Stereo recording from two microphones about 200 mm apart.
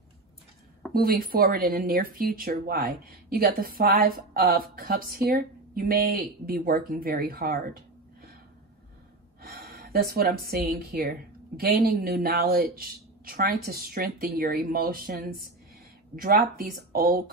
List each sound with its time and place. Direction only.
0.9 s speech: 45° right (ahead or behind)
9.4 s speech: 50° right (ahead or behind)